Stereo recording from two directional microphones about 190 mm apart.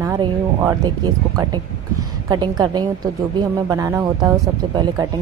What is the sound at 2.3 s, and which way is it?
A woman's voice, 20° right (ahead or behind).